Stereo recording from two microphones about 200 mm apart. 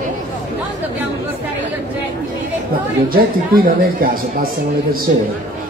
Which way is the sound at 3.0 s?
45° right (ahead or behind).